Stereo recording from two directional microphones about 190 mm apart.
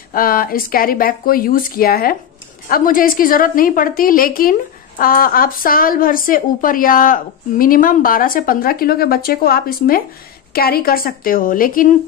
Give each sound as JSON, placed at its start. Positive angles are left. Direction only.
{"t": 0.1, "sound": "a woman's voice", "side_deg": 50}